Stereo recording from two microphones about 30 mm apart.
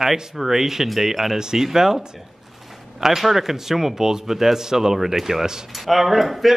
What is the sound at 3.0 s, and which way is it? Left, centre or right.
A man's voice, centre.